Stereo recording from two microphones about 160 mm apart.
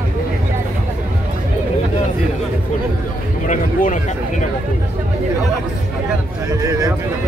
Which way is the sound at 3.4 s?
50° left (ahead or behind).